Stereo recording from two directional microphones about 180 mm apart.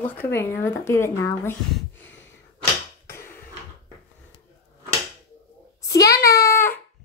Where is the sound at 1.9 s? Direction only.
10° left (ahead or behind).